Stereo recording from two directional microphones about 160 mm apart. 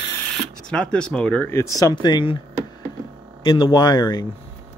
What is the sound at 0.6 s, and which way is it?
Speech, 5° left (ahead or behind).